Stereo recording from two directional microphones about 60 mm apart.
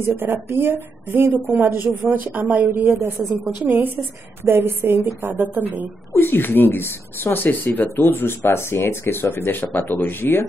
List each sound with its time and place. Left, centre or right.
0.0 s a woman's voice: right
2.7 s a woman's voice: right
3.2 s a woman's voice: right
3.6 s a woman's voice: right
6.1 s speech: left